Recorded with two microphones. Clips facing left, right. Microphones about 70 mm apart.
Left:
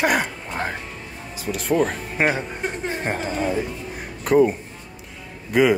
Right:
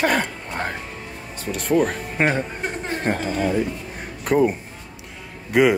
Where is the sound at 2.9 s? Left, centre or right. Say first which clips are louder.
Right 2 dB; centre.